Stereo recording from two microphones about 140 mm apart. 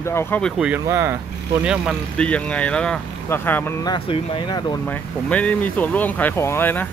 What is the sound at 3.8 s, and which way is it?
Speech, 35° left (ahead or behind).